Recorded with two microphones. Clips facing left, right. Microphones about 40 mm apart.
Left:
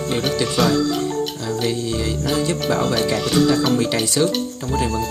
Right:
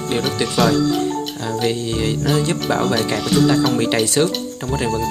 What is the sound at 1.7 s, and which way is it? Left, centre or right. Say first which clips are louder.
Speech: right 2 dB; right.